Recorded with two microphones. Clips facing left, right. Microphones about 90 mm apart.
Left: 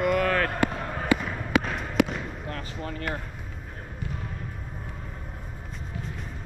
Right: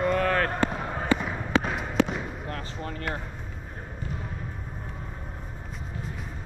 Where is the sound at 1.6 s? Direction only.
Centre (ahead or behind).